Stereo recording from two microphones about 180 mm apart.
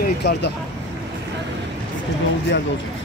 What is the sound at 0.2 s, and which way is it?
Speech, 65° left (ahead or behind).